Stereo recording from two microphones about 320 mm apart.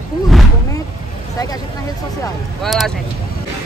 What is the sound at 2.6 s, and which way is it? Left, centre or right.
Speech, centre.